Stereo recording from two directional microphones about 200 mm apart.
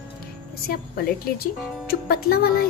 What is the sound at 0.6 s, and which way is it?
A woman's voice, 50° left (ahead or behind).